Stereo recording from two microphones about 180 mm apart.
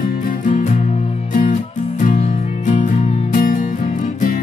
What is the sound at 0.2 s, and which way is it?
Music, 45° left (ahead or behind).